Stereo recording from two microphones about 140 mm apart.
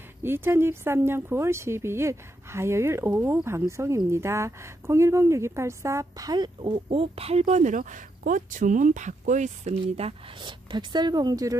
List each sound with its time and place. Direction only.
0.2 s a woman's voice: 15° right (ahead or behind)